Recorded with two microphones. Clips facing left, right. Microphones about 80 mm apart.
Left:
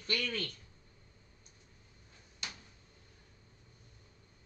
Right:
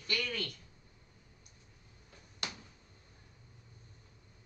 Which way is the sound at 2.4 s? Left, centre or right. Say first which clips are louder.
Right 4 dB; right.